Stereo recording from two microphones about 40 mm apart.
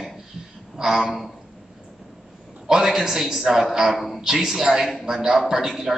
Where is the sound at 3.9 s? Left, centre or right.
Centre.